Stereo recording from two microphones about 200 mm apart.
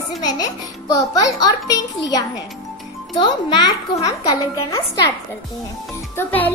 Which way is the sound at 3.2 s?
20° left (ahead or behind).